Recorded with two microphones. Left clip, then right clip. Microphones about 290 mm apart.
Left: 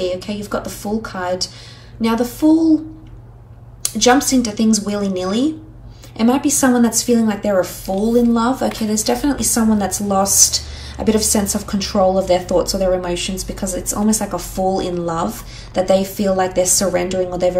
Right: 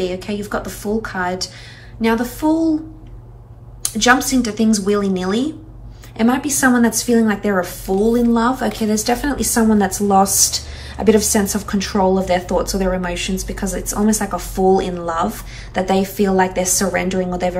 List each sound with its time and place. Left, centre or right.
0.0 s speech: centre
3.8 s speech: centre